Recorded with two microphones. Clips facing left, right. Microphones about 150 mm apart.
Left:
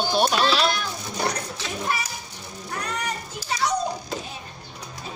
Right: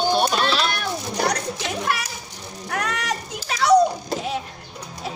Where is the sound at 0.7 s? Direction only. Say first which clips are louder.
Right 4 dB; 65° right (ahead or behind).